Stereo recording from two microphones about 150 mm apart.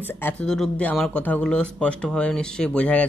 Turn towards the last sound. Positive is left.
turn(degrees=10)  # may be behind; listen again after turning